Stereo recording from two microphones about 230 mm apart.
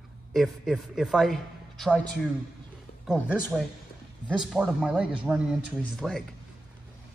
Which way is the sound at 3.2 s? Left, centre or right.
Centre.